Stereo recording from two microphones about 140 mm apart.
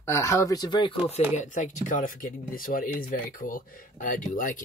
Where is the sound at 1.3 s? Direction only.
60° left (ahead or behind).